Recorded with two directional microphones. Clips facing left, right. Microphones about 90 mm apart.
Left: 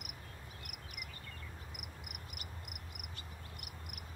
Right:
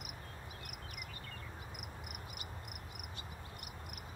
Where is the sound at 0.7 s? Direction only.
35° right (ahead or behind).